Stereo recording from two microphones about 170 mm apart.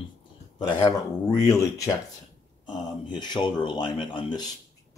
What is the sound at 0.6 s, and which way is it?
Speech, 25° left (ahead or behind).